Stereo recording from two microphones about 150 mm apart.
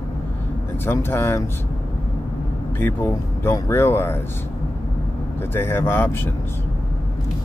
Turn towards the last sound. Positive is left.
turn(degrees=15)  # may be behind; listen again after turning